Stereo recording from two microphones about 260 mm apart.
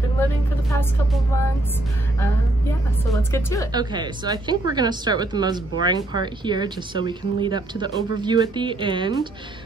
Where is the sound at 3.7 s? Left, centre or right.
Centre.